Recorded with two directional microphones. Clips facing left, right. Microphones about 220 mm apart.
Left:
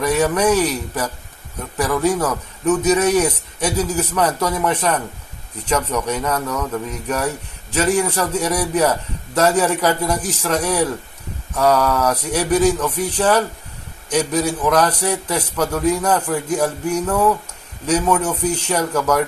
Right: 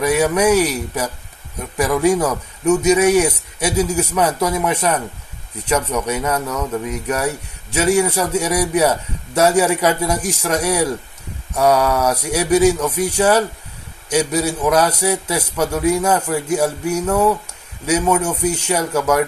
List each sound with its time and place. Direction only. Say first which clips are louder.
0.0 s speech: right 1 dB; 10° right (ahead or behind)